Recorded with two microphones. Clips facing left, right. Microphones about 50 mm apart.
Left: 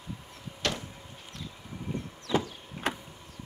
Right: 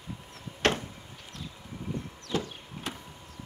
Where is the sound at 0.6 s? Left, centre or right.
Right.